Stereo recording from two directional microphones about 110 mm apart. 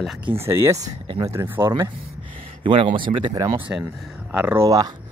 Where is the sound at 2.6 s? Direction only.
50° right (ahead or behind).